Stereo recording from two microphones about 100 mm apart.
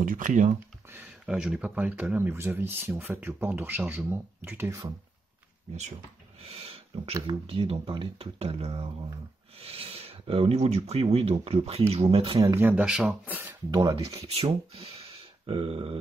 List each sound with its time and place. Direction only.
1.2 s speech: 10° right (ahead or behind)
6.4 s a sound: 75° right (ahead or behind)
7.2 s speech: 65° right (ahead or behind)
12.5 s speech: 20° right (ahead or behind)
12.8 s speech: 5° right (ahead or behind)
13.7 s speech: 45° right (ahead or behind)
14.2 s speech: 85° right; by 16.0 s 70° right (ahead or behind)